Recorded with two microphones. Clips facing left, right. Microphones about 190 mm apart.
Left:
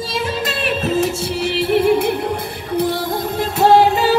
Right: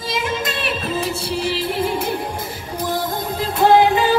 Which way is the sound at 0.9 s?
50° left (ahead or behind).